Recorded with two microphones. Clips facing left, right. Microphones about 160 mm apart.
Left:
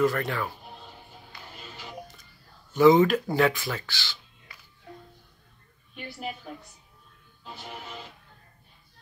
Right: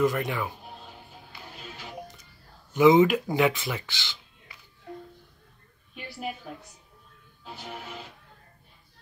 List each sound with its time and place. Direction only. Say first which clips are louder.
0.0 s speech: even; 15° right (ahead or behind)
2.7 s speech: even; 20° right (ahead or behind)
5.9 s a woman's voice: right 1 dB; centre (ahead or behind)